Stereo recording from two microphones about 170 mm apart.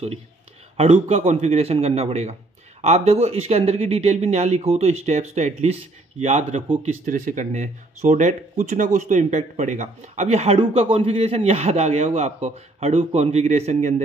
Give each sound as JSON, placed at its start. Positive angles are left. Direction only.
{"t": 0.7, "sound": "speech", "side_deg": -35}